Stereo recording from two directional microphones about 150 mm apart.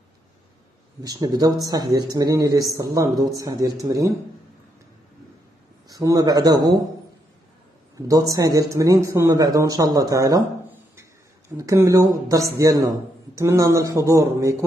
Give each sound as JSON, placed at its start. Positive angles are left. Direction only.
{"t": 1.0, "sound": "speech", "side_deg": -25}
{"t": 5.9, "sound": "speech", "side_deg": -25}
{"t": 7.9, "sound": "speech", "side_deg": -25}
{"t": 11.5, "sound": "speech", "side_deg": -20}